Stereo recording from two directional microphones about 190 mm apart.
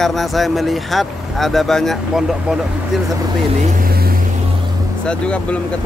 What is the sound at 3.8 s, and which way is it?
Vehicle, 50° right (ahead or behind).